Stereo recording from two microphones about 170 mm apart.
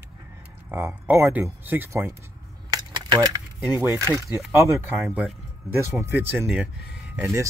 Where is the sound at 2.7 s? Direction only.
25° right (ahead or behind).